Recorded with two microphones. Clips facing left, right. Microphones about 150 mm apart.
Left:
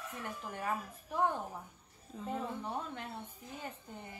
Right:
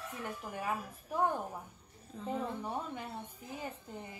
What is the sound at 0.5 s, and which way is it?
A woman's voice, 10° right (ahead or behind).